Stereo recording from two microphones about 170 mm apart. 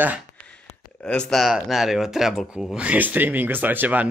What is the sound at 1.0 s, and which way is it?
Speech, 5° left (ahead or behind).